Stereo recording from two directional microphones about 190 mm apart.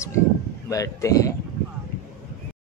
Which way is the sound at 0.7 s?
20° left (ahead or behind).